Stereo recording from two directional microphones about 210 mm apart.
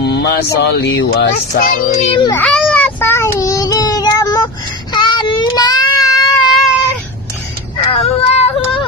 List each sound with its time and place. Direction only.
0.0 s speech: 50° left (ahead or behind)
1.5 s speech: 40° left (ahead or behind)
2.1 s a child's voice: 20° left (ahead or behind)
2.4 s child singing: 5° left (ahead or behind); by 6.3 s 20° left (ahead or behind)
7.7 s vehicle: 25° left (ahead or behind)